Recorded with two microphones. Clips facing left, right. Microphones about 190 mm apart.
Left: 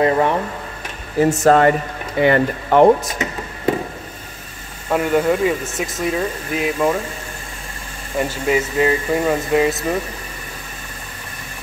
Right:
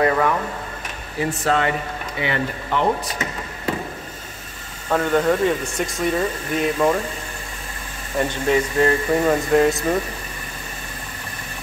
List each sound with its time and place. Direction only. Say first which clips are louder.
0.0 s speech: left 3 dB; 25° left (ahead or behind)
1.2 s speech: left 8 dB; 45° left (ahead or behind)
4.8 s speech: left 2 dB; 10° left (ahead or behind)
8.2 s speech: left 1 dB; 5° left (ahead or behind)